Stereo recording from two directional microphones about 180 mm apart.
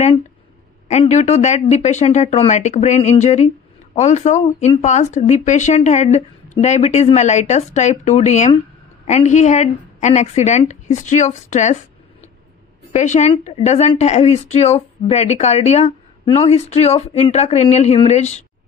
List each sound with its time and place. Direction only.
0.8 s speech: 40° left (ahead or behind)